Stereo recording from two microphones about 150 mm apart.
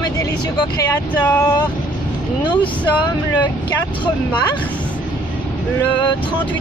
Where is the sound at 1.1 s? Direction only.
10° left (ahead or behind).